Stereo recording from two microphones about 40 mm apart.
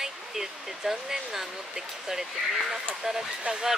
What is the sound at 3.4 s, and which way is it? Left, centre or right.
Speech, right.